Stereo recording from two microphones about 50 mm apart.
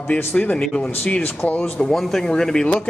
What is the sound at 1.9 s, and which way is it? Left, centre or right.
Speech, centre.